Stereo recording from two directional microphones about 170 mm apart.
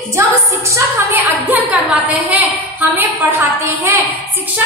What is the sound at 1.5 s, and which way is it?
A woman's voice, 10° right (ahead or behind).